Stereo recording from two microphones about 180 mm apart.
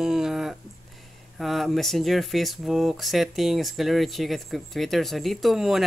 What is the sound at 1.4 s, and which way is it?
Speech, centre (ahead or behind).